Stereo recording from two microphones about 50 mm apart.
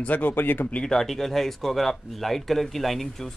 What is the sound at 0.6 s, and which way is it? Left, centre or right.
Speech, left.